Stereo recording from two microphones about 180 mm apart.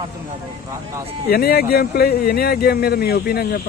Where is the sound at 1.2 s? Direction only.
60° left (ahead or behind).